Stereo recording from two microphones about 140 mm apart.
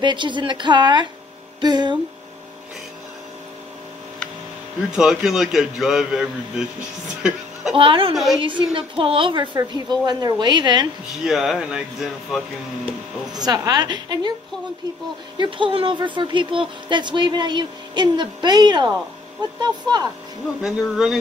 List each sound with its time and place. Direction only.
0.0 s speech: 35° right (ahead or behind)
4.9 s a man's voice: 5° right (ahead or behind)
7.7 s speech: 40° right (ahead or behind)
11.2 s a man's voice: centre (ahead or behind)
13.3 s a woman's voice: 30° right (ahead or behind)
15.3 s a woman's voice: 35° right (ahead or behind)
20.6 s a man's voice: 5° right (ahead or behind)